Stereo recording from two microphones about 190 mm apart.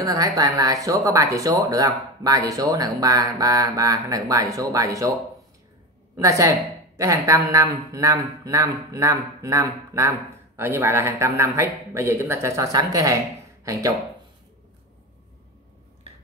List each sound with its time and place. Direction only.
0.0 s speech: 20° right (ahead or behind)
6.1 s speech: 15° right (ahead or behind)